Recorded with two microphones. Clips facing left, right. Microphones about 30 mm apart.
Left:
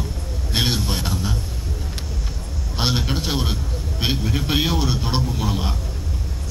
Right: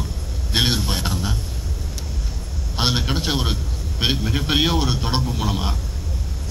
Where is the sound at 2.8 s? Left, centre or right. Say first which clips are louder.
Right 1 dB; centre.